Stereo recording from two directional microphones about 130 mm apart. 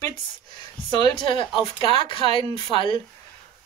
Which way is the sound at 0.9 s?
35° left (ahead or behind).